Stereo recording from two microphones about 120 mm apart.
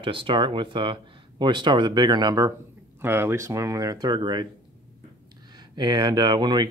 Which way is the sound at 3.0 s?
20° right (ahead or behind).